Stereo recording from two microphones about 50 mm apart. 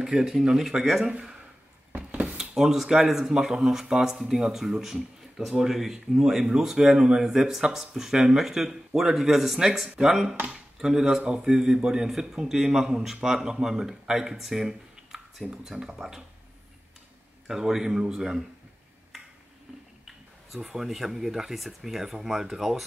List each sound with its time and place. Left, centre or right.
0.0 s speech: centre
1.0 s a man's voice: centre
1.9 s a sound: right
2.5 s speech: centre
17.5 s speech: centre
20.6 s speech: centre